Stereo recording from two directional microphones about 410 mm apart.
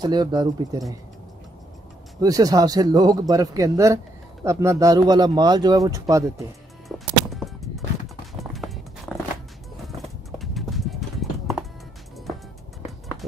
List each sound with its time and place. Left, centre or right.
0.0 s a man's voice: centre
2.1 s a man's voice: centre
7.3 s music: centre
10.4 s clip-clop: centre